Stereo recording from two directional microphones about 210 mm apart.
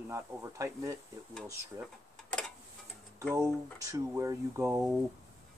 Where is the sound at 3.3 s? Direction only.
15° right (ahead or behind).